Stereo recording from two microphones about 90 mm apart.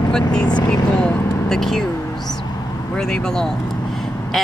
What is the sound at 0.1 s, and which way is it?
Speech, 10° left (ahead or behind).